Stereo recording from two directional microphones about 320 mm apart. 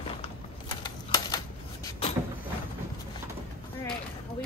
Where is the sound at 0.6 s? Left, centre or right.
Centre.